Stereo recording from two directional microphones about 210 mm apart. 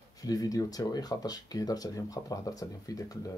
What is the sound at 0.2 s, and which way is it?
Speech, 15° left (ahead or behind).